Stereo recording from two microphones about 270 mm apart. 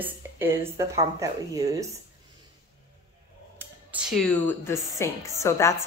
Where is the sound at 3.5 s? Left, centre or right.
Centre.